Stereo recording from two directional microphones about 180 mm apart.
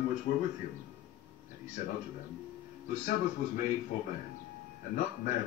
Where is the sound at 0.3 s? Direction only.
65° left (ahead or behind).